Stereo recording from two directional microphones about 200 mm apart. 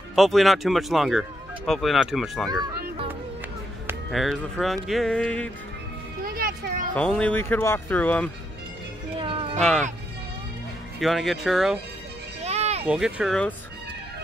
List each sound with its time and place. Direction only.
0.1 s speech: centre (ahead or behind)
4.1 s speech: centre (ahead or behind)
6.2 s a sound: 45° right (ahead or behind)
7.0 s speech: 5° left (ahead or behind)
9.1 s music: 25° right (ahead or behind)
9.6 s speech: 5° left (ahead or behind)
11.0 s speech: centre (ahead or behind)
12.4 s a sound: 30° right (ahead or behind)
12.8 s speech: 5° right (ahead or behind)